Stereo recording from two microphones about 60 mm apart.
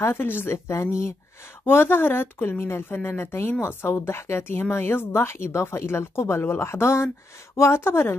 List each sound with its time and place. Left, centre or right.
0.0 s speech: left
1.6 s speech: left